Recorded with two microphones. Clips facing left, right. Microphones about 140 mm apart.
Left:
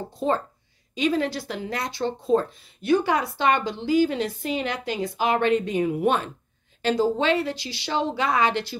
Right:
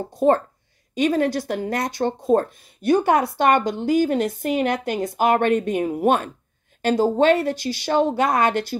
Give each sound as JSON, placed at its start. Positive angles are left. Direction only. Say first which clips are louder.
{"t": 0.9, "sound": "speech", "louder": "right 4 dB", "side_deg": -50}